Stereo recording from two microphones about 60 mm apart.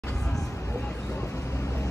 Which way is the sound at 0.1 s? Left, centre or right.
Centre.